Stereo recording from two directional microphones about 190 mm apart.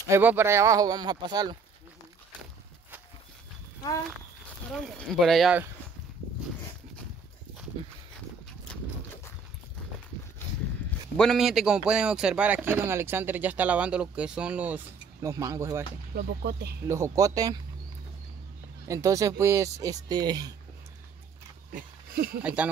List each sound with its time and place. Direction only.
0.1 s speech: 10° right (ahead or behind)
4.7 s speech: centre (ahead or behind)
11.1 s speech: centre (ahead or behind); by 15.8 s 15° right (ahead or behind)
16.2 s speech: 60° right (ahead or behind)
16.8 s speech: 15° right (ahead or behind)
18.9 s speech: 15° right (ahead or behind)
21.7 s speech: 50° right (ahead or behind)
22.4 s speech: 5° right (ahead or behind)